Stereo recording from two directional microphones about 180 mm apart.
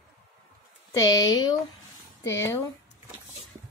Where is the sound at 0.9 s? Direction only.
20° left (ahead or behind).